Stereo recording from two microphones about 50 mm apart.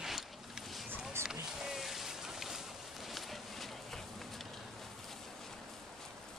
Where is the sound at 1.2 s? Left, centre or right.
Centre.